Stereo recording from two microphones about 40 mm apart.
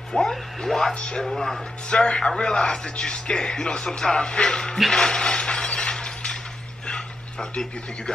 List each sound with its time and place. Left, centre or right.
0.1 s speech: centre
1.9 s speech: left
4.9 s glass: centre
6.9 s a sound: left